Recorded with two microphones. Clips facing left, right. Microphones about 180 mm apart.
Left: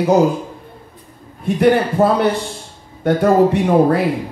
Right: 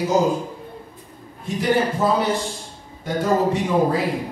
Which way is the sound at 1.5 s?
60° left (ahead or behind).